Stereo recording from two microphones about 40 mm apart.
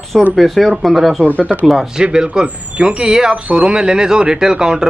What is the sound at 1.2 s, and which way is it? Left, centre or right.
Speech, right.